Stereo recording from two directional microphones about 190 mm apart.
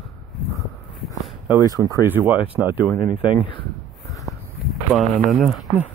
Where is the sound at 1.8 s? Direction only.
15° right (ahead or behind).